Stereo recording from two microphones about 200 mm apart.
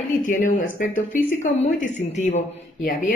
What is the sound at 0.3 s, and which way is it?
Speech, 40° left (ahead or behind).